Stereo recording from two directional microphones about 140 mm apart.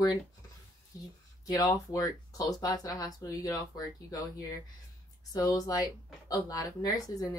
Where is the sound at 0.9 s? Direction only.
25° left (ahead or behind).